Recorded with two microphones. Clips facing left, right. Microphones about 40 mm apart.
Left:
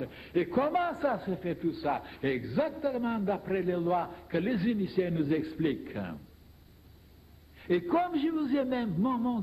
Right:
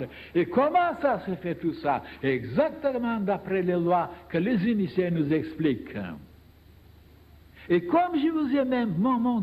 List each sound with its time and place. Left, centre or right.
0.0 s a man's voice: right
7.5 s a man's voice: right